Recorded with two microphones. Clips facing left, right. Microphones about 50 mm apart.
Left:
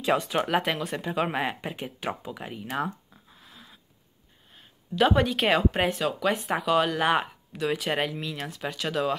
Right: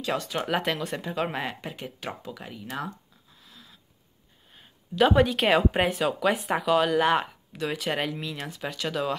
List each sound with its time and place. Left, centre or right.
0.0 s speech: centre
0.4 s speech: centre
1.5 s speech: centre
2.8 s a sound: left
4.6 s speech: centre